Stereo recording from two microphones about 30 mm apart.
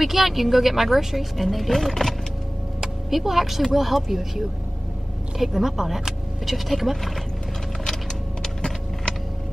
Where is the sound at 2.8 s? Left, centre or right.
Centre.